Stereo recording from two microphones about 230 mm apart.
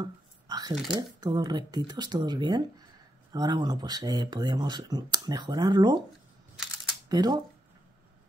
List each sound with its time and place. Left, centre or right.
0.0 s a sound: centre
1.2 s speech: centre
7.1 s speech: centre